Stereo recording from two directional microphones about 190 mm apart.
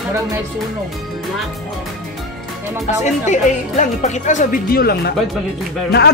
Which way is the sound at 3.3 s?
35° left (ahead or behind).